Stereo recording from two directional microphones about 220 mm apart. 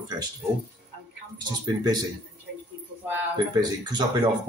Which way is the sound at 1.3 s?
20° right (ahead or behind).